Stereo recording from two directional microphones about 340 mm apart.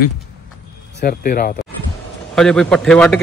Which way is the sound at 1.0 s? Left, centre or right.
Left.